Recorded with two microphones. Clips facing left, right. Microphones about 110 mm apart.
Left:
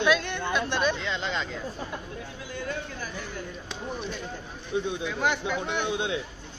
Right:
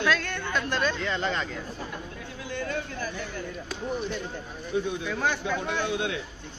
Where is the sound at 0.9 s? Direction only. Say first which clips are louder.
Right 2 dB; centre (ahead or behind).